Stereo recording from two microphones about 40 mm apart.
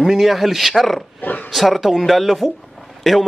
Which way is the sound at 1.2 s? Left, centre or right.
Left.